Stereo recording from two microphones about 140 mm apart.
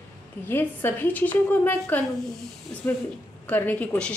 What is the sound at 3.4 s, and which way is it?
Speech, 10° left (ahead or behind).